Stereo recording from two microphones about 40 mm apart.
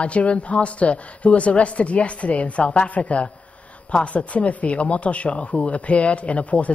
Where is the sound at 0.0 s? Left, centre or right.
Left.